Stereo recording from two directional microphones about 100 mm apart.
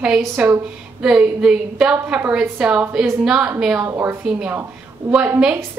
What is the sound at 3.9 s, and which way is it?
Speech, 25° right (ahead or behind).